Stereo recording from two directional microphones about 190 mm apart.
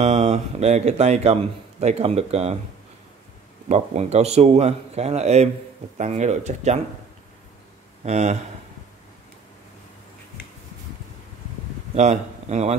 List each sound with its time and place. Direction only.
0.0 s speech: 35° right (ahead or behind)
3.6 s speech: 35° right (ahead or behind)
8.0 s speech: 35° right (ahead or behind)
11.9 s speech: 35° right (ahead or behind)